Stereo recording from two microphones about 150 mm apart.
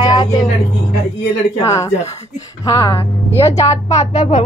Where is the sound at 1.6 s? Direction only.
20° left (ahead or behind).